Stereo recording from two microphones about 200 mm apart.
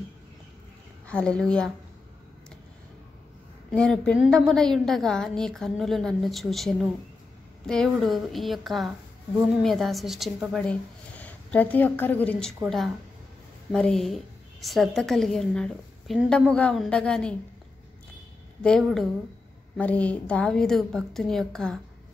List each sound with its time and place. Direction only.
1.0 s a woman's voice: 5° left (ahead or behind)
3.7 s a woman's voice: 5° left (ahead or behind)
18.6 s a woman's voice: 5° left (ahead or behind)